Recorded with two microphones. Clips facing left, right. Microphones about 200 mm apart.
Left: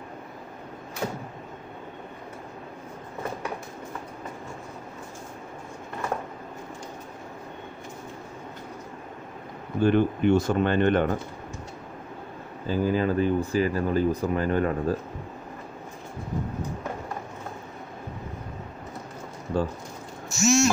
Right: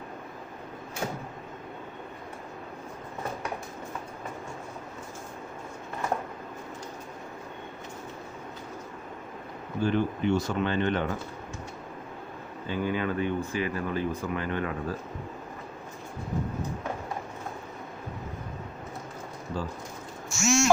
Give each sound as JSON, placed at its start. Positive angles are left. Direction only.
{"t": 9.8, "sound": "speech", "side_deg": 55}
{"t": 12.6, "sound": "speech", "side_deg": 35}
{"t": 19.5, "sound": "speech", "side_deg": 60}
{"t": 20.2, "sound": "a sound", "side_deg": 40}